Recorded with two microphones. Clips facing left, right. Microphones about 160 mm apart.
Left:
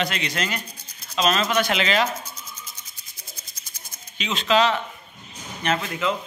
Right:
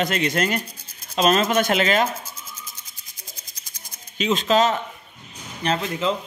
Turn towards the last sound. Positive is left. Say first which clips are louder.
# right 1 dB
turn(degrees=-30)  # may be behind; listen again after turning